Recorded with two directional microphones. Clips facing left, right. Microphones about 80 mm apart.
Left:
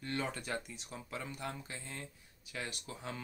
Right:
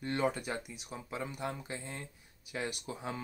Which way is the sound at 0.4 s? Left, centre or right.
Centre.